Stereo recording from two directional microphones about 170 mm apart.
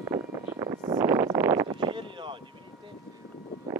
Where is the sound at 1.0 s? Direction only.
20° right (ahead or behind).